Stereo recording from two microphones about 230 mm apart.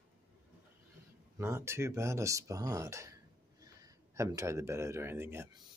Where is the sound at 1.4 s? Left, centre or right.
Centre.